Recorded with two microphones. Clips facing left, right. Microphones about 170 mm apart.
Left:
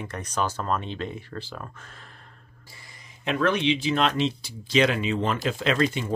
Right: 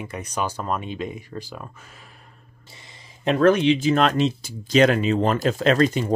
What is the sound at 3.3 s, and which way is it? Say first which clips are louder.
Speech: right 7 dB; 40° right (ahead or behind).